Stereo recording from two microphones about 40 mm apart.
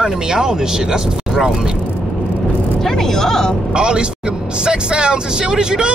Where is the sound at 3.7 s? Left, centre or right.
Right.